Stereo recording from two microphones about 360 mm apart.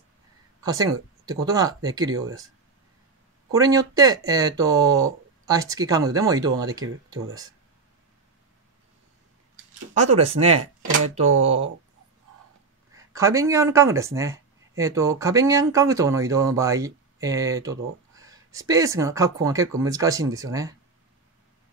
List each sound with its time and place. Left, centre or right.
0.6 s speech: centre
3.5 s speech: centre
10.1 s speech: centre
10.6 s speech: right
12.9 s speech: centre